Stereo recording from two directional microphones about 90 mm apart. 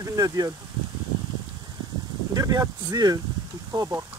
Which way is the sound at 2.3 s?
45° right (ahead or behind).